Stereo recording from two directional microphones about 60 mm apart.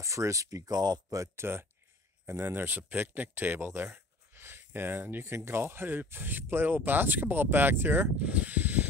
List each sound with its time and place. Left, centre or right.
0.0 s speech: right
1.3 s speech: right
8.2 s snake: right